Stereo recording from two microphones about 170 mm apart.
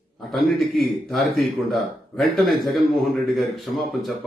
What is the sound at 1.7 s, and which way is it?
A man's voice, centre (ahead or behind).